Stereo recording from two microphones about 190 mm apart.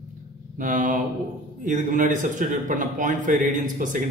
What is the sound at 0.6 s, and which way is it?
Speech, 45° right (ahead or behind).